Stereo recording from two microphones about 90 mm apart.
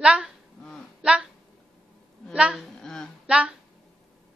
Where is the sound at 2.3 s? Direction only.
10° right (ahead or behind).